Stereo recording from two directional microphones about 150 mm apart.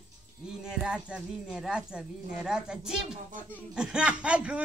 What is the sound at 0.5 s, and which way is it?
Speech, 5° right (ahead or behind).